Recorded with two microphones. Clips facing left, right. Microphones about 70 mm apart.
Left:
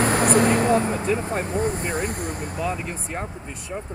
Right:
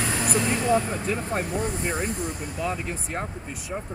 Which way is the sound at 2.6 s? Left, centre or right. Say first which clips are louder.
Left 1 dB; centre.